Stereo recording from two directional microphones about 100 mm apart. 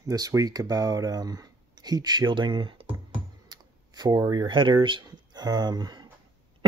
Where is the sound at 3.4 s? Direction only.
45° right (ahead or behind).